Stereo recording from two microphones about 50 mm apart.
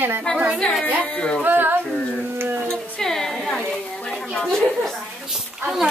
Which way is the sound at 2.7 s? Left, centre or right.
Centre.